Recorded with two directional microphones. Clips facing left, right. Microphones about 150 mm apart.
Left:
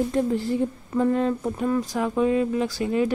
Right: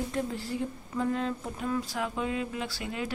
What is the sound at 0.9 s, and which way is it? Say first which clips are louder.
Speech: left 8 dB; 50° left (ahead or behind).